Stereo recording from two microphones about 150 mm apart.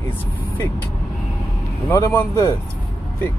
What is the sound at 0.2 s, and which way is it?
Vehicle, 10° left (ahead or behind).